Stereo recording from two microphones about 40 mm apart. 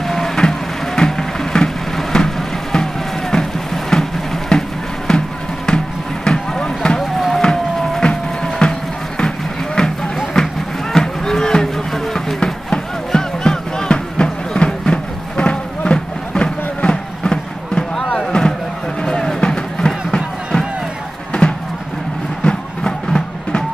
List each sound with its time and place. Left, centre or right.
0.0 s a sound: centre
5.7 s music: centre
6.2 s vehicle: centre
7.0 s a sound: centre
8.0 s music: left
9.8 s music: centre
10.3 s cattle: centre
12.4 s music: centre
18.9 s a sound: left
19.4 s music: centre
21.3 s a sound: left
22.4 s music: centre